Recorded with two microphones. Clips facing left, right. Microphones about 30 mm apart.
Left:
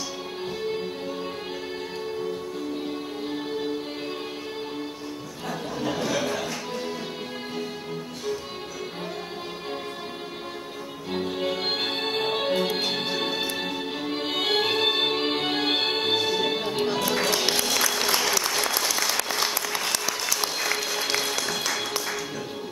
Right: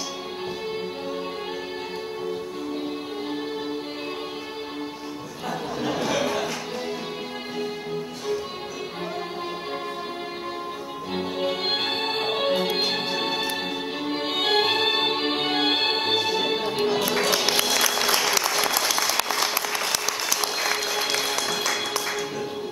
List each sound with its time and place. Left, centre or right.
5.9 s a sound: centre
11.1 s music: centre
17.9 s applause: centre
18.6 s applause: centre
20.3 s music: centre